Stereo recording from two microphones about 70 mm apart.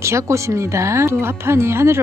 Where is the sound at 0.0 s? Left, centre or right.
Right.